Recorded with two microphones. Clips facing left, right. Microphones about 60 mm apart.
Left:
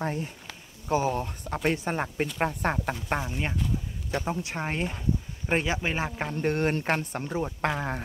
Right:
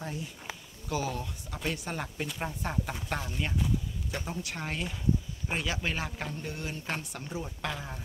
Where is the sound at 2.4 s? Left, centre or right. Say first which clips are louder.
Left 7 dB; left.